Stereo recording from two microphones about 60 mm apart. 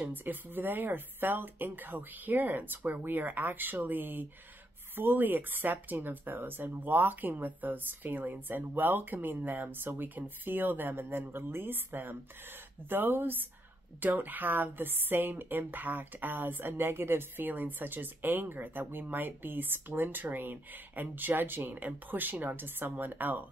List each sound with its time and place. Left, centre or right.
0.0 s a woman's voice: right